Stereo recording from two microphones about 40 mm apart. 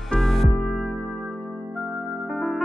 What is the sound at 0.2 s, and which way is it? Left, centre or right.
Music, centre.